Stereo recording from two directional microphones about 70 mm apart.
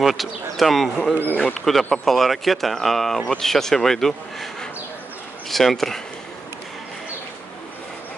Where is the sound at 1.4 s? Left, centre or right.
Centre.